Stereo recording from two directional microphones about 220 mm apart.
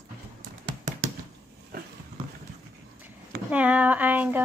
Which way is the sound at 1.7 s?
45° right (ahead or behind).